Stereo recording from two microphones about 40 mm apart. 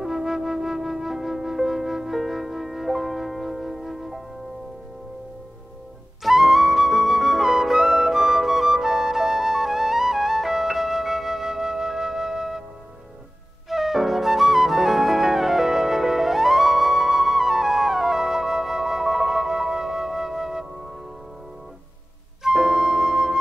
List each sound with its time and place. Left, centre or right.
0.0 s flute: centre
6.2 s flute: centre
13.7 s flute: centre
22.4 s music: centre